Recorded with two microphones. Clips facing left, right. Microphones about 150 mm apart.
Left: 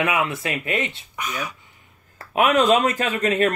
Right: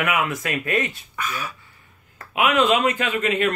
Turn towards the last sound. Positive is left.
turn(degrees=40)  # may be behind; listen again after turning